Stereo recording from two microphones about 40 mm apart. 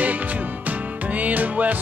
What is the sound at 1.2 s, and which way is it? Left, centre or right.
Music, right.